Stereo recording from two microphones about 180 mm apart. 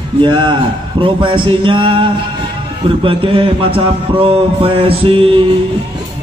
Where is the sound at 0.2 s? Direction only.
25° right (ahead or behind).